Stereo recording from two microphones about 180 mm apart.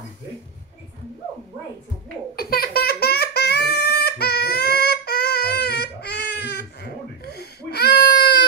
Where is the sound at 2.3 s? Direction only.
55° left (ahead or behind).